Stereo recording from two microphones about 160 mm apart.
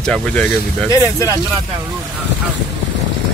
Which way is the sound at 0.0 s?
5° left (ahead or behind).